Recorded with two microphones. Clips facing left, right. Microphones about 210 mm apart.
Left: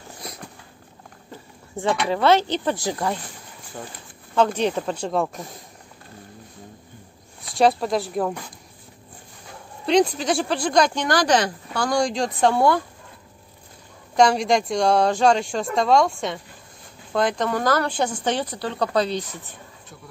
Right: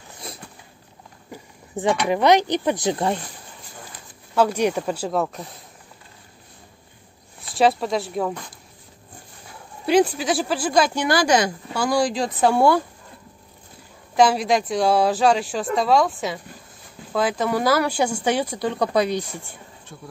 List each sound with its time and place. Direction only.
1.3 s a sound: 15° right (ahead or behind)
2.0 s speech: 15° right (ahead or behind)
4.4 s speech: 10° right (ahead or behind)
7.4 s speech: centre (ahead or behind)
9.8 s speech: 5° right (ahead or behind)
14.1 s speech: 5° right (ahead or behind)